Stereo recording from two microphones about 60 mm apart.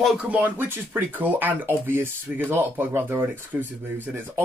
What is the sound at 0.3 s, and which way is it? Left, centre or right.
Speech, right.